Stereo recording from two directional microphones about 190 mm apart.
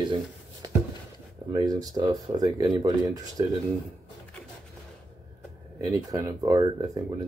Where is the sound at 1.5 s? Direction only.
20° right (ahead or behind).